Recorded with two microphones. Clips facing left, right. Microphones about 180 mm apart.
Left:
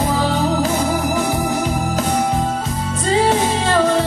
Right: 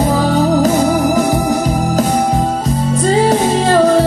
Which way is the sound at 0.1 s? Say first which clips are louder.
Right 5 dB; 40° right (ahead or behind).